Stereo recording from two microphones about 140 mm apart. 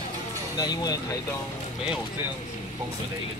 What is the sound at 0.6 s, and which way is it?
Speech, 30° left (ahead or behind).